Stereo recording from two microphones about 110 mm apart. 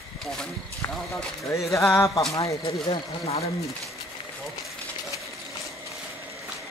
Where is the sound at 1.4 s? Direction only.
30° left (ahead or behind).